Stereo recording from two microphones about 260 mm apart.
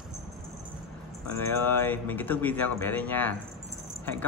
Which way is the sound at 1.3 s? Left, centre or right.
Centre.